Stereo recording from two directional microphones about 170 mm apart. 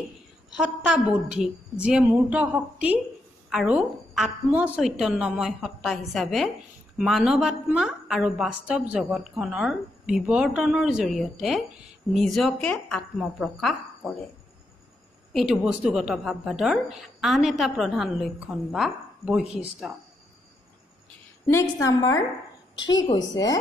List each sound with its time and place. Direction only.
0.8 s a woman's voice: 5° right (ahead or behind)
15.3 s a woman's voice: 5° right (ahead or behind)
21.5 s a woman's voice: 15° left (ahead or behind)